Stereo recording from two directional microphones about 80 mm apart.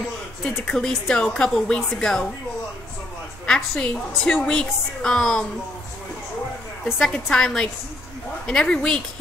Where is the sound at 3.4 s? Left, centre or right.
Centre.